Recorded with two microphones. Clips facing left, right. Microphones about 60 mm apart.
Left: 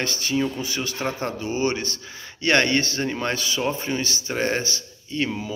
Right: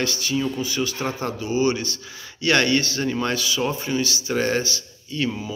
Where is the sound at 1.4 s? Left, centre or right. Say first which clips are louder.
Right 4 dB; left.